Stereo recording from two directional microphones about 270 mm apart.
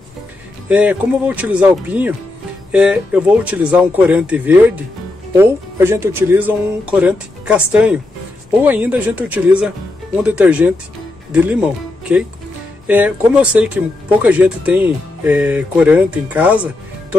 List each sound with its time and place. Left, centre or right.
0.7 s speech: centre